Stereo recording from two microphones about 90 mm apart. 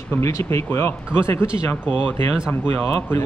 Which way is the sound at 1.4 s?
15° right (ahead or behind).